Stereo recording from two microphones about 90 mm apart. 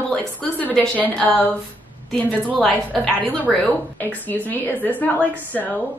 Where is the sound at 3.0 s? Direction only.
10° left (ahead or behind).